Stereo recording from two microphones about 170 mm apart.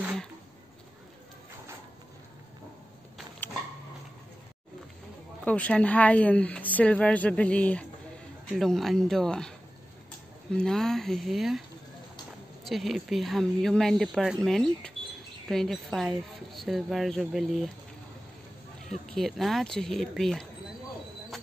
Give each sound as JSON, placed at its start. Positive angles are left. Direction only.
{"t": 0.0, "sound": "a sound", "side_deg": 0}
{"t": 5.4, "sound": "speech", "side_deg": 10}
{"t": 10.5, "sound": "speech", "side_deg": 5}
{"t": 12.6, "sound": "speech", "side_deg": 0}
{"t": 18.9, "sound": "speech", "side_deg": 0}